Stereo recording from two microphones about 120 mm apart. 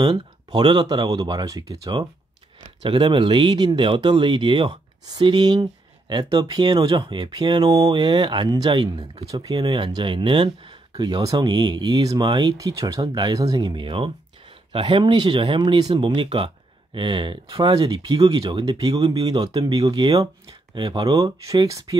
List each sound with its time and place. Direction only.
0.0 s speech: 40° right (ahead or behind)